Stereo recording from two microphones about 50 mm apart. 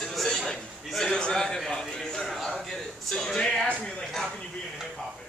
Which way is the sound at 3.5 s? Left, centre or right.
Left.